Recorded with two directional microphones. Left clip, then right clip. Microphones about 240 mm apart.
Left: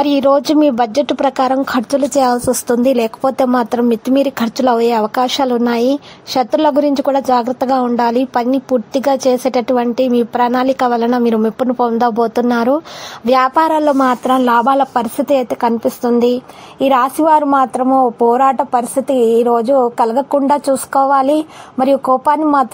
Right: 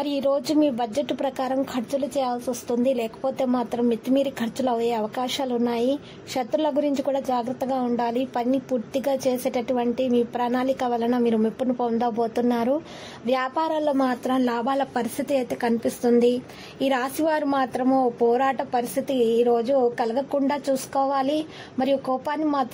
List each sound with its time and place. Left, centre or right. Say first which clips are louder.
0.0 s speech: left 12 dB; left
2.8 s a woman's voice: left 10 dB; left